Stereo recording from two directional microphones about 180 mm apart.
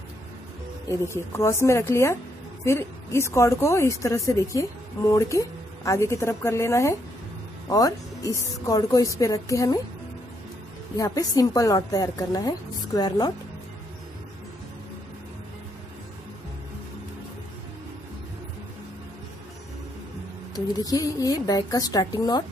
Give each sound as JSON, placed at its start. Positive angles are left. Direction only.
{"t": 0.8, "sound": "a woman's voice", "side_deg": 15}
{"t": 11.0, "sound": "a woman's voice", "side_deg": 20}
{"t": 20.5, "sound": "a woman's voice", "side_deg": 20}